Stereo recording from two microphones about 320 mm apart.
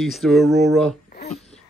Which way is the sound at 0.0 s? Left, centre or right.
Centre.